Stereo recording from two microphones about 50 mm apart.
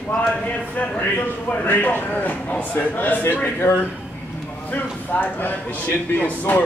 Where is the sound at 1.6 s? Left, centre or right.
Left.